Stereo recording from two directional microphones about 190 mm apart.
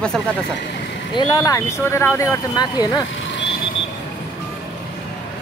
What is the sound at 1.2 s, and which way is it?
Speech, 20° left (ahead or behind).